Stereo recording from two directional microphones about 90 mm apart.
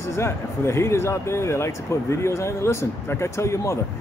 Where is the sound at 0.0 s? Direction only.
30° left (ahead or behind).